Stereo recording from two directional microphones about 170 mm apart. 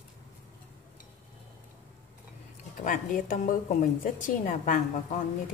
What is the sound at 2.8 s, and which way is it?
A woman's voice, 50° left (ahead or behind).